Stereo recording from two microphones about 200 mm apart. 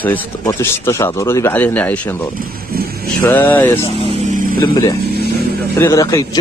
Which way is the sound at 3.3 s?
10° left (ahead or behind).